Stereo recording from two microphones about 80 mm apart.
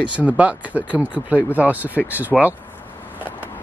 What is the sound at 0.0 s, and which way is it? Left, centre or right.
Speech, centre.